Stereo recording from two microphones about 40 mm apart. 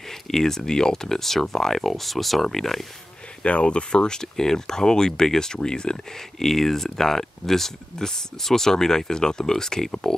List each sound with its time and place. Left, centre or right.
0.1 s speech: centre
3.4 s speech: left
6.4 s speech: centre